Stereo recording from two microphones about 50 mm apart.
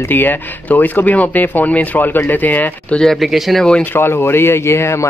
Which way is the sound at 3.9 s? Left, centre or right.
Left.